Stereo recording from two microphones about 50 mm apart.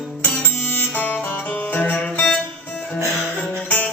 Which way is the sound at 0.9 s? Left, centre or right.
Left.